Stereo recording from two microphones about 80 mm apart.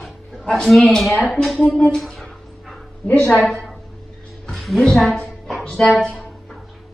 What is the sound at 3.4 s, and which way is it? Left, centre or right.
Speech, centre.